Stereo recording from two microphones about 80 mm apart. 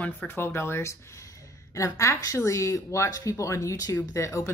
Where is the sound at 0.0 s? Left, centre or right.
Left.